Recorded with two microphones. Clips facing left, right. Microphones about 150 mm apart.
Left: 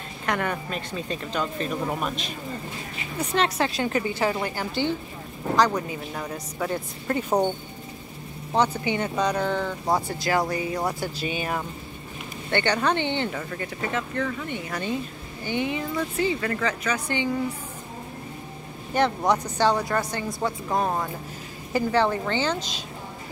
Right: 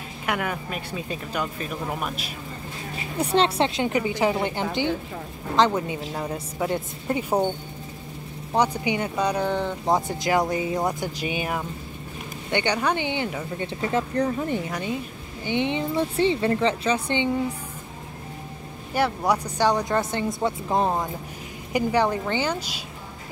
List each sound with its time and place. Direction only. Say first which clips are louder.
0.3 s speech: left 1 dB; 5° right (ahead or behind)
3.2 s speech: right 3 dB; 30° right (ahead or behind); by 7.4 s 10° right (ahead or behind)
8.5 s speech: right 1 dB; 15° right (ahead or behind)
13.6 s speech: right 6 dB; 25° right (ahead or behind)
14.7 s speech: even; 10° right (ahead or behind)
15.4 s speech: right 2 dB; 25° right (ahead or behind)
18.9 s speech: left 1 dB; 10° right (ahead or behind)